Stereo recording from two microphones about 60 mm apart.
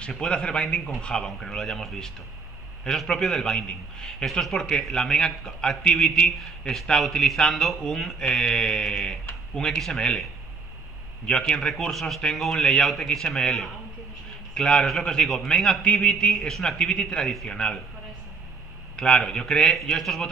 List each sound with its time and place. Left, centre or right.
0.1 s a man's voice: centre
11.2 s a man's voice: centre
18.9 s a man's voice: centre